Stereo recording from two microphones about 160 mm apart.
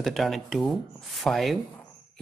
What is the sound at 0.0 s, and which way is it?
Speech, centre (ahead or behind).